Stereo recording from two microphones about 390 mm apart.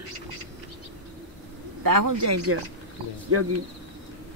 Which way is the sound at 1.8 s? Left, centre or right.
Right.